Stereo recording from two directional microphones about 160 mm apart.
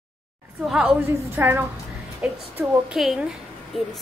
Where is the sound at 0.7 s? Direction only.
5° right (ahead or behind).